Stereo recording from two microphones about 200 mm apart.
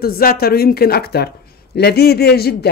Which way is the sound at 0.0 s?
50° left (ahead or behind).